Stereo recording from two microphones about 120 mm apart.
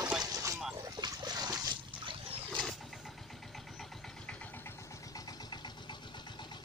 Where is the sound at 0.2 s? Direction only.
30° right (ahead or behind).